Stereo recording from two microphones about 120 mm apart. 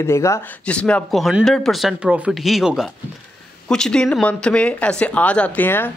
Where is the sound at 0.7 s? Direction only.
10° left (ahead or behind).